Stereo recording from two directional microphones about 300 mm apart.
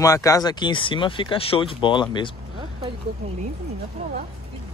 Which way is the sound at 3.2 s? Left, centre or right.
Right.